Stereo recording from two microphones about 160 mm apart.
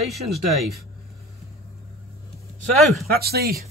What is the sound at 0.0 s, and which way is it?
Speech, centre (ahead or behind).